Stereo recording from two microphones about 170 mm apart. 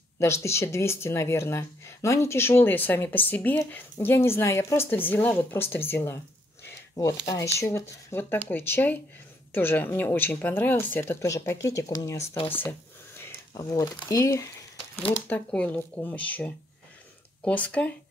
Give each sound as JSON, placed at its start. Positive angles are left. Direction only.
{"t": 0.2, "sound": "speech", "side_deg": 15}
{"t": 6.6, "sound": "a sound", "side_deg": 20}
{"t": 7.2, "sound": "speech", "side_deg": 20}